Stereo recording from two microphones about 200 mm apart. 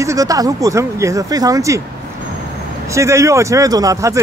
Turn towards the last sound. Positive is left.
turn(degrees=-15)  # may be behind; listen again after turning